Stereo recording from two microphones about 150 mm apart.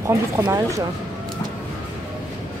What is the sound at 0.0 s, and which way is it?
Speech, 20° right (ahead or behind).